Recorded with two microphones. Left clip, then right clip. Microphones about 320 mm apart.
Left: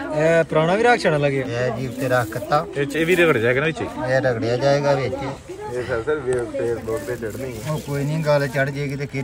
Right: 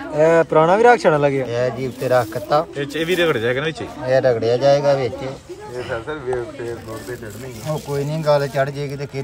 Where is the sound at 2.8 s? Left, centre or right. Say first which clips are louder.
Left 1 dB; centre.